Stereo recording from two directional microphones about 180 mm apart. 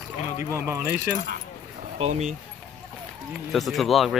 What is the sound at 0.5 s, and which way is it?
Speech, 10° right (ahead or behind).